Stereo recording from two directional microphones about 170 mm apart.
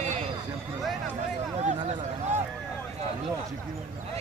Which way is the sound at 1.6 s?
45° right (ahead or behind).